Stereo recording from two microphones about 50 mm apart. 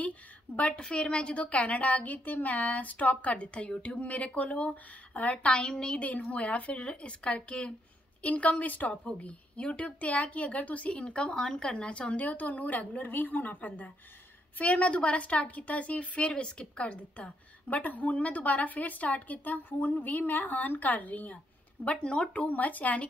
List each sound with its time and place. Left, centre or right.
0.6 s a woman's voice: left
21.8 s a woman's voice: centre